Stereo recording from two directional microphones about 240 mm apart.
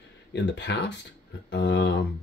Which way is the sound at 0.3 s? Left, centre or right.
Left.